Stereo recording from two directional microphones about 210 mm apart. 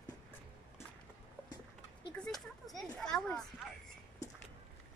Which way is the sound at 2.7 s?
Centre (ahead or behind).